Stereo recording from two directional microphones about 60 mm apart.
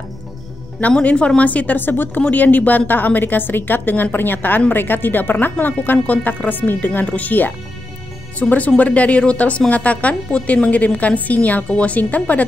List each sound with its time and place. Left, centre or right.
1.0 s a woman's voice: centre